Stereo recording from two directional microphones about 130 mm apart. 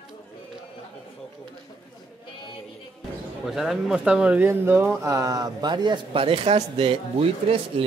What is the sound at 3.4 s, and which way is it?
Speech, centre (ahead or behind).